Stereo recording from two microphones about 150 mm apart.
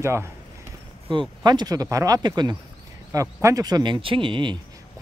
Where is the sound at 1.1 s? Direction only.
30° right (ahead or behind).